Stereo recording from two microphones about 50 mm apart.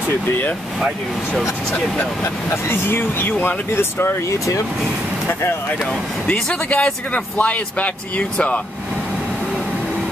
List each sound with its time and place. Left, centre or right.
2.5 s speech: left
3.7 s speech: left
6.2 s speech: left